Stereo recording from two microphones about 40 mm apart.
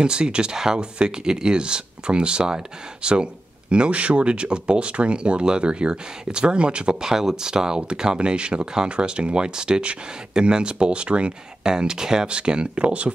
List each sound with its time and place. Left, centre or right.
0.0 s speech: right